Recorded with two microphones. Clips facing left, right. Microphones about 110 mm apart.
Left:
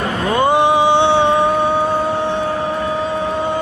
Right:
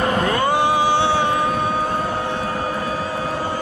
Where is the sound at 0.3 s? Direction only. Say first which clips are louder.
Left 4 dB; 20° left (ahead or behind).